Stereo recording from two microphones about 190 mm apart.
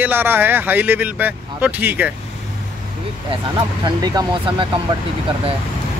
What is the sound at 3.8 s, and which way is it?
Speech, 20° right (ahead or behind).